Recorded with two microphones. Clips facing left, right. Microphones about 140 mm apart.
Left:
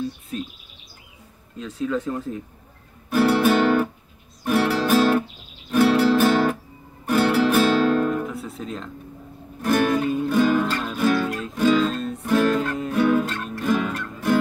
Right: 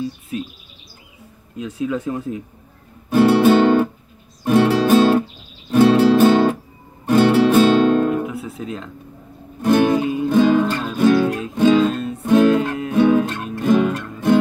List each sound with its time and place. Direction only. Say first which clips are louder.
0.3 s bird vocalization: right 5 dB; 10° right (ahead or behind)
1.6 s speech: right 2 dB; 10° right (ahead or behind)
3.4 s guitar: right 5 dB; 30° right (ahead or behind)
4.5 s music: right 6 dB; 20° right (ahead or behind)
8.1 s music: right 4 dB; 10° right (ahead or behind)
9.6 s music: right 5 dB; 20° right (ahead or behind)
9.9 s music: right 3 dB; 10° right (ahead or behind)
10.3 s music: right 6 dB; 20° right (ahead or behind); by 12.2 s 5° right (ahead or behind)
12.2 s music: right 6 dB; 20° right (ahead or behind)